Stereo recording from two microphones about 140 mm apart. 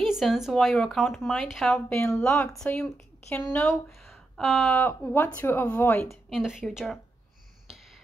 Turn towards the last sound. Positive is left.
turn(degrees=0)  # may be behind; listen again after turning